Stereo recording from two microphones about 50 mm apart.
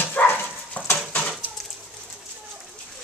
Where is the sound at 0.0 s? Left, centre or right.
Left.